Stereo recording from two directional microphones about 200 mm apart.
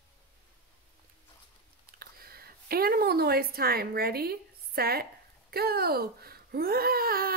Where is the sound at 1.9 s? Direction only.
50° right (ahead or behind).